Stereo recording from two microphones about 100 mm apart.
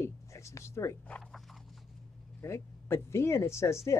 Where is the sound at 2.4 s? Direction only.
25° left (ahead or behind).